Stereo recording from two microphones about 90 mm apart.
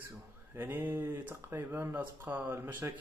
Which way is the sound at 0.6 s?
20° right (ahead or behind).